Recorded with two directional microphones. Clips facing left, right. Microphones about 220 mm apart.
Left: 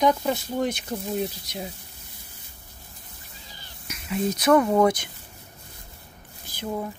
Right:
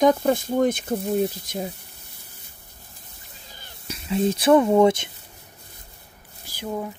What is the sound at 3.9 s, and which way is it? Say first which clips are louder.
Speech: right 4 dB; 30° right (ahead or behind).